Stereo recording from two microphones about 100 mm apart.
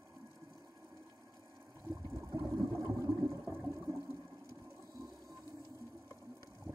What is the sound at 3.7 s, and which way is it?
Toilet flush, 30° right (ahead or behind).